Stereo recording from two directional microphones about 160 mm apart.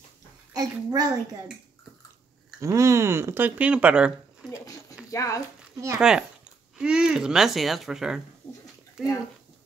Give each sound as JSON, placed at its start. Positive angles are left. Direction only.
{"t": 0.5, "sound": "a child's voice", "side_deg": -20}
{"t": 2.6, "sound": "speech", "side_deg": -20}
{"t": 5.1, "sound": "speech", "side_deg": 20}
{"t": 5.9, "sound": "speech", "side_deg": -5}
{"t": 8.4, "sound": "a sound", "side_deg": 10}